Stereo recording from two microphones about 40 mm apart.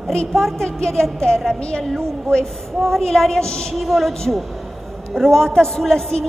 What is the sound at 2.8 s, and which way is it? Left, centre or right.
Speech, centre.